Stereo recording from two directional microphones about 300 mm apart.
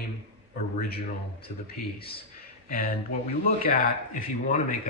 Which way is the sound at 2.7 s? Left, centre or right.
Left.